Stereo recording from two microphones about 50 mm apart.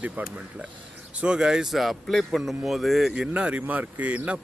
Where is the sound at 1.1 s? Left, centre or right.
Centre.